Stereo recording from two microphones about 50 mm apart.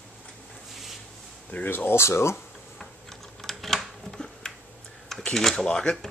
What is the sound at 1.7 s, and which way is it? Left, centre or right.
Speech, left.